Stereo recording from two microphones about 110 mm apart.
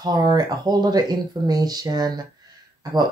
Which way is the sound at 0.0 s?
35° right (ahead or behind).